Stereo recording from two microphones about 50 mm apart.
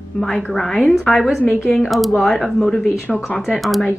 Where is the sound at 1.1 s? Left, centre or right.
Centre.